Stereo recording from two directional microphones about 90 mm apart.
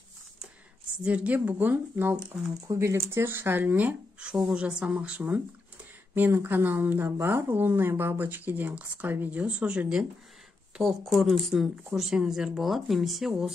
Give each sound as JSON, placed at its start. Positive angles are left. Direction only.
{"t": 1.0, "sound": "speech", "side_deg": -15}